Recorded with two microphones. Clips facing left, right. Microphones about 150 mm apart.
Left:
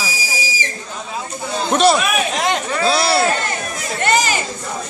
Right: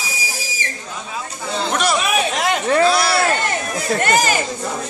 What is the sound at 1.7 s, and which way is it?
Chatter, 30° left (ahead or behind).